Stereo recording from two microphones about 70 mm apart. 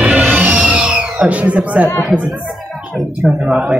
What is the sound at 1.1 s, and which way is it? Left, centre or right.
Speech, centre.